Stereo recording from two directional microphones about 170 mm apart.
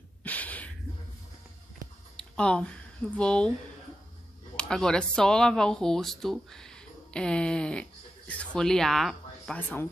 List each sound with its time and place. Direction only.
0.2 s gasp: 10° left (ahead or behind)
2.1 s speech: 5° left (ahead or behind)
4.6 s speech: 5° left (ahead or behind)